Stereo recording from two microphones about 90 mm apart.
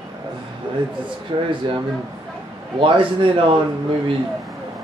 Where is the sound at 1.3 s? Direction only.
65° right (ahead or behind).